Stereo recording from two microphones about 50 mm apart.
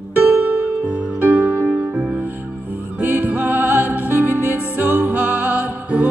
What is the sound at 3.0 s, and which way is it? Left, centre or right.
Music, right.